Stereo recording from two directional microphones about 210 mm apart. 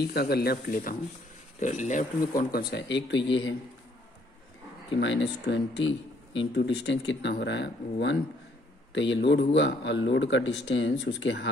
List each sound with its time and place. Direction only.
0.0 s speech: 50° left (ahead or behind)
4.9 s speech: 60° left (ahead or behind)